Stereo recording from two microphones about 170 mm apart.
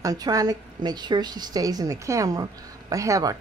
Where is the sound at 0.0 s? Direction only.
20° right (ahead or behind).